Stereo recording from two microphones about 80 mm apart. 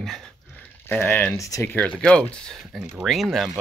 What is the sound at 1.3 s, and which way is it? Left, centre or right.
Speech, left.